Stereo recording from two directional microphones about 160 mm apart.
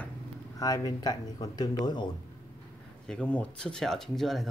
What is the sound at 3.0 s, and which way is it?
Speech, 5° left (ahead or behind).